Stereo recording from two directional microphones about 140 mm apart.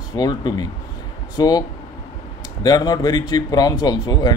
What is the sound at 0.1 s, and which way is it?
A man's voice, 30° left (ahead or behind).